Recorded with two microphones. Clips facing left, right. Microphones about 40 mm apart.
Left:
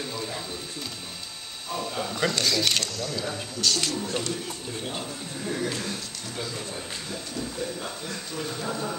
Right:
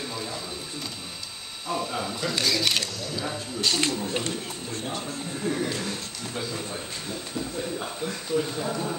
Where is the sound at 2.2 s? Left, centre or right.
Centre.